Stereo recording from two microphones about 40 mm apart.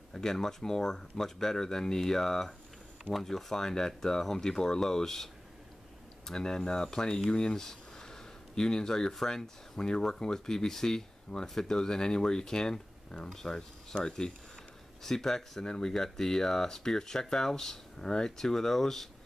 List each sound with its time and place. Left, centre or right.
0.1 s speech: centre
15.0 s speech: centre